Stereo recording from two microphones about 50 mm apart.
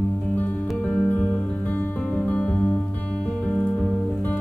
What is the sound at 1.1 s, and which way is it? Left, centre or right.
Music, left.